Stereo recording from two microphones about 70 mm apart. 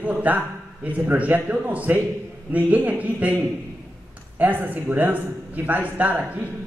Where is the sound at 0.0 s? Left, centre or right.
Right.